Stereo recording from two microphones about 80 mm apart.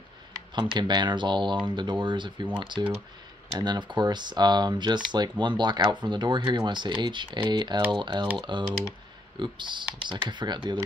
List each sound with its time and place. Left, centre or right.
0.6 s speech: right
2.6 s speech: right
3.5 s speech: right